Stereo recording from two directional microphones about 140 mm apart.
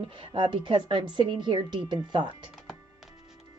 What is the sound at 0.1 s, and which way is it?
A woman's voice, 40° right (ahead or behind).